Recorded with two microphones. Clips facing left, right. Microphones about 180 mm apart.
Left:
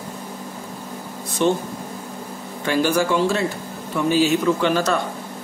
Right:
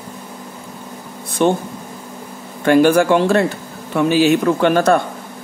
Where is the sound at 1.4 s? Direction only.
55° right (ahead or behind).